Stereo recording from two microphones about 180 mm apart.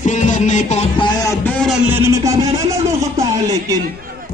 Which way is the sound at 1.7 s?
5° right (ahead or behind).